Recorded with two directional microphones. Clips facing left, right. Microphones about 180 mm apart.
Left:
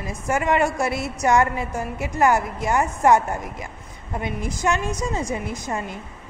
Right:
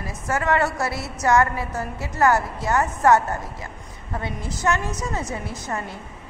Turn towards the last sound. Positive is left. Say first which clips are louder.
# left 2 dB
turn(degrees=15)  # may be behind; listen again after turning